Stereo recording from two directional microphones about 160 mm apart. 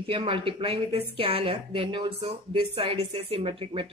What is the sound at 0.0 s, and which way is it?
Speech, 35° right (ahead or behind).